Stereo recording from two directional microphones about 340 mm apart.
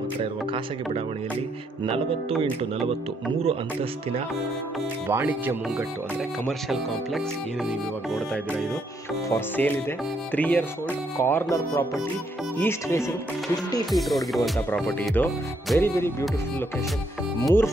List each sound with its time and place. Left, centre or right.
0.2 s speech: centre
2.9 s speech: centre
5.0 s speech: centre
9.3 s speech: centre